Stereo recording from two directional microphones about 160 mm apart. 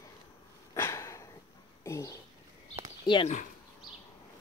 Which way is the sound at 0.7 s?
20° left (ahead or behind).